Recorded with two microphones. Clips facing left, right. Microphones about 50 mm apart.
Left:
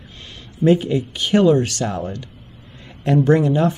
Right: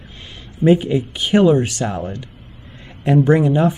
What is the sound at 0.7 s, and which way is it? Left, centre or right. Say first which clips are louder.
A man's voice: right 2 dB; centre.